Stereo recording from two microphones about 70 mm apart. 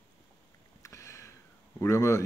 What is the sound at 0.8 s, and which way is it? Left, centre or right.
Sniff, left.